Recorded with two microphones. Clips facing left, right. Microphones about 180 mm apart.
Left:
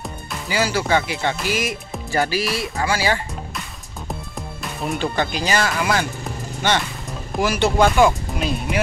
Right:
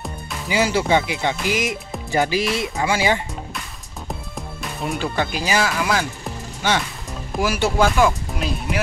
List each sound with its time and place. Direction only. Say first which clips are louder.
0.5 s speech: right 2 dB; 20° right (ahead or behind)
4.4 s speech: even; centre (ahead or behind)
7.3 s speech: left 1 dB; 5° right (ahead or behind)